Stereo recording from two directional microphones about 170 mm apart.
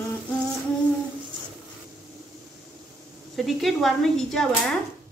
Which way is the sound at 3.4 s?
Centre (ahead or behind).